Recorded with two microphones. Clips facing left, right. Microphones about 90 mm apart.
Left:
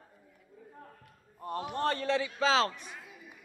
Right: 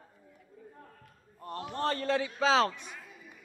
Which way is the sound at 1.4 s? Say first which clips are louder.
Left 1 dB; 15° left (ahead or behind).